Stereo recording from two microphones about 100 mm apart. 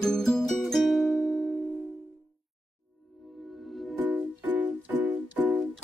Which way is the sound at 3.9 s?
20° right (ahead or behind).